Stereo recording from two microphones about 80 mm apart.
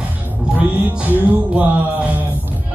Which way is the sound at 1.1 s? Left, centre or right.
Right.